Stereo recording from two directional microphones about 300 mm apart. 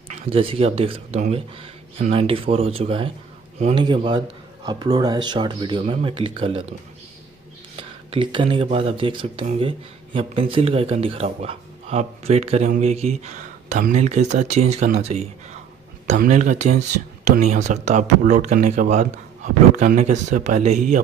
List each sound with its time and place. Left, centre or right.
0.1 s speech: right
7.7 s speech: centre